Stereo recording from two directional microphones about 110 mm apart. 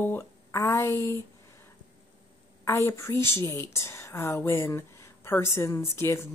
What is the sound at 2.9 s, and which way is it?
Speech, 25° left (ahead or behind).